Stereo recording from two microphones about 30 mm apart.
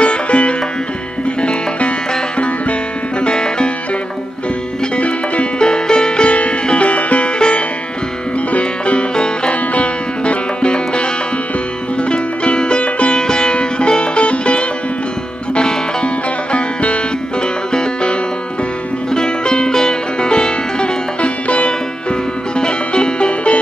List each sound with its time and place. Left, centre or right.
0.0 s music: left
3.2 s music: left
4.9 s music: left
5.6 s music: left
6.7 s music: left
7.3 s music: left
8.5 s music: left
9.1 s music: left
9.5 s music: left
10.6 s music: left
19.1 s music: left
22.6 s music: left